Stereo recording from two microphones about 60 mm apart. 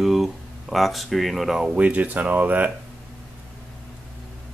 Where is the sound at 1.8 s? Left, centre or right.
Right.